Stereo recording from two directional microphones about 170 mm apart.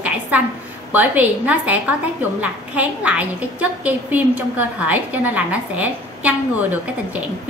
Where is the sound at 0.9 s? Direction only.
10° right (ahead or behind).